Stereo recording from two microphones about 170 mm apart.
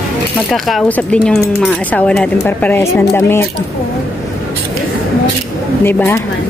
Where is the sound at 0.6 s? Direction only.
5° left (ahead or behind).